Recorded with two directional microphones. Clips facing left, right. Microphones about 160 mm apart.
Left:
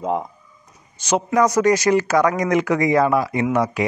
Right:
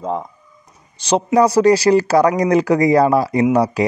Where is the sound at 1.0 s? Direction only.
30° right (ahead or behind).